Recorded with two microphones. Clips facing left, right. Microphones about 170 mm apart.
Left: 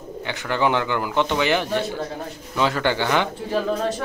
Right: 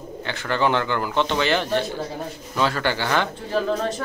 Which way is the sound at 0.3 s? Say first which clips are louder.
Even; 15° left (ahead or behind).